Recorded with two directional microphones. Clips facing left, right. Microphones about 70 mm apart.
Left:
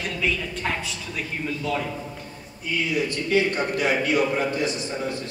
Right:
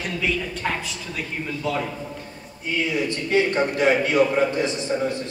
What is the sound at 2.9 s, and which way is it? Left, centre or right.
A man's voice, right.